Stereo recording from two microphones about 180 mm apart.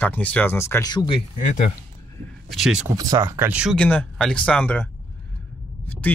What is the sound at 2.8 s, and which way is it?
Speech, 20° right (ahead or behind).